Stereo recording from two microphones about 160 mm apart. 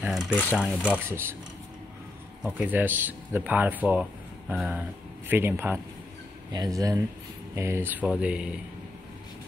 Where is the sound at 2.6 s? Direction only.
10° right (ahead or behind).